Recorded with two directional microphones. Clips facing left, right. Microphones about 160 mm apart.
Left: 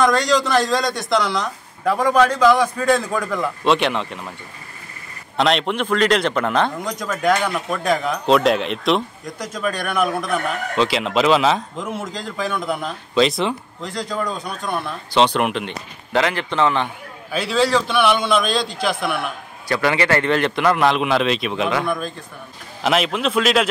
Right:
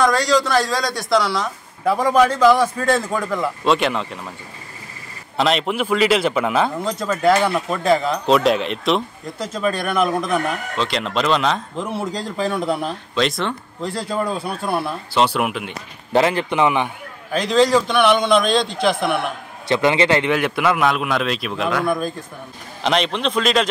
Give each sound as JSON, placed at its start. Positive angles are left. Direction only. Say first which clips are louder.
{"t": 0.0, "sound": "speech", "louder": "even", "side_deg": 0}
{"t": 5.4, "sound": "a man's voice", "louder": "even", "side_deg": 0}
{"t": 9.8, "sound": "a man's voice", "louder": "even", "side_deg": 10}
{"t": 11.9, "sound": "a man's voice", "louder": "right 3 dB", "side_deg": -35}
{"t": 13.1, "sound": "speech", "louder": "left 4 dB", "side_deg": 0}
{"t": 13.7, "sound": "a man's voice", "louder": "right 2 dB", "side_deg": -30}
{"t": 15.1, "sound": "a man's voice", "louder": "left 2 dB", "side_deg": -5}
{"t": 16.1, "sound": "a man's voice", "louder": "right 3 dB", "side_deg": -25}
{"t": 17.3, "sound": "a man's voice", "louder": "right 3 dB", "side_deg": 10}
{"t": 17.6, "sound": "a man's voice", "louder": "right 2 dB", "side_deg": -15}
{"t": 18.4, "sound": "speech", "louder": "right 3 dB", "side_deg": 5}
{"t": 18.7, "sound": "a man's voice", "louder": "right 3 dB", "side_deg": -25}
{"t": 22.8, "sound": "speech", "louder": "even", "side_deg": 5}